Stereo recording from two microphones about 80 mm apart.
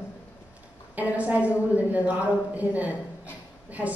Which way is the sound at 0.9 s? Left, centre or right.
Centre.